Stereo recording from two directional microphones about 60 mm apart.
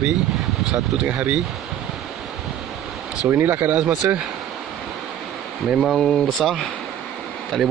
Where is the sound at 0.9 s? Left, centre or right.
Centre.